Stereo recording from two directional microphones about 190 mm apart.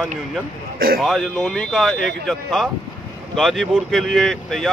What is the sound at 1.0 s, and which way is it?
Speech, centre (ahead or behind).